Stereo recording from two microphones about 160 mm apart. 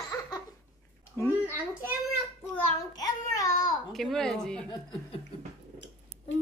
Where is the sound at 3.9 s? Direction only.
Centre (ahead or behind).